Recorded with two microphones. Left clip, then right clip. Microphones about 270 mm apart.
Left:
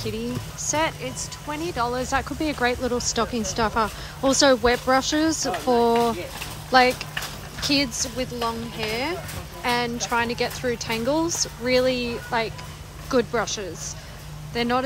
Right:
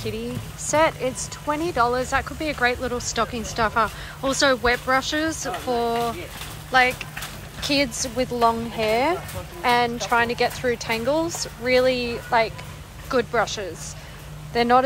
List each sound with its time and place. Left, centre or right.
0.7 s speech: centre